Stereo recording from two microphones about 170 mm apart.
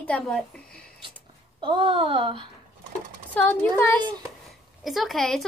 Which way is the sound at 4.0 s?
25° right (ahead or behind).